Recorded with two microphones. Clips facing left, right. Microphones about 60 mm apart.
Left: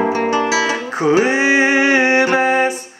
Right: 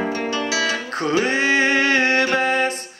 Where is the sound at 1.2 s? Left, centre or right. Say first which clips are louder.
Left 4 dB; centre.